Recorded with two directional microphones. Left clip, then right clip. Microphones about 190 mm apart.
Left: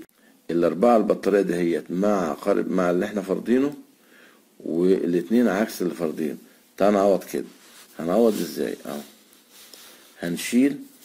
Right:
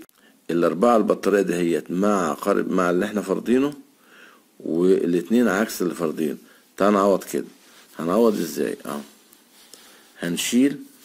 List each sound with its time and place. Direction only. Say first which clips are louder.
0.5 s speech: even; 35° right (ahead or behind)
4.7 s speech: right 2 dB; 35° right (ahead or behind)
10.1 s speech: right 2 dB; 35° right (ahead or behind)